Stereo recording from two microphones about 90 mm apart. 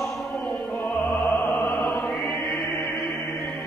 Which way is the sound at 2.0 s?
Centre (ahead or behind).